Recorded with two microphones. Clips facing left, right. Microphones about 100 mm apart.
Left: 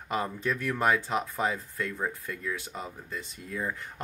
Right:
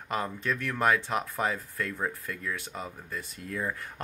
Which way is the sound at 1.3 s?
5° left (ahead or behind).